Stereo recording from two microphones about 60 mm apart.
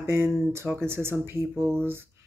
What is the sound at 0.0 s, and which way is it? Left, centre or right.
Speech, right.